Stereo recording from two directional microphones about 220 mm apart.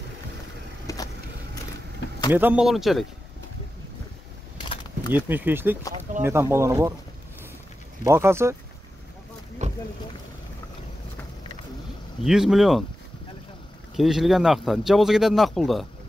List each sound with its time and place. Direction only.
0.9 s vehicle: 15° left (ahead or behind)
2.3 s speech: 5° right (ahead or behind)
4.6 s a sound: 20° left (ahead or behind)
5.1 s speech: 10° right (ahead or behind)
8.0 s speech: 10° right (ahead or behind)
9.6 s boat: 30° right (ahead or behind)
12.2 s speech: centre (ahead or behind)
13.9 s speech: centre (ahead or behind)